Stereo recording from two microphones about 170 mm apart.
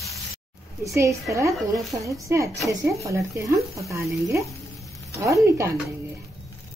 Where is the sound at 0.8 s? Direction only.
20° right (ahead or behind).